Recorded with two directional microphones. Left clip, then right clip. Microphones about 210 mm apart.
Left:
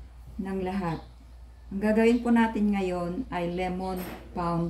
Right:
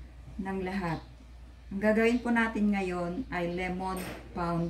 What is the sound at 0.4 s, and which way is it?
Speech, centre (ahead or behind).